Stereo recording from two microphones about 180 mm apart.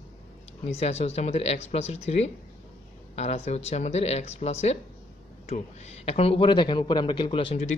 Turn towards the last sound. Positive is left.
turn(degrees=35)  # may be behind; listen again after turning